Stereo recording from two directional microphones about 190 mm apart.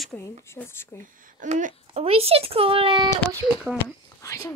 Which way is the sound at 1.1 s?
45° right (ahead or behind).